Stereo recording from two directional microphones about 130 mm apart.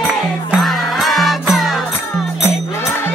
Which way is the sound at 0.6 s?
Centre (ahead or behind).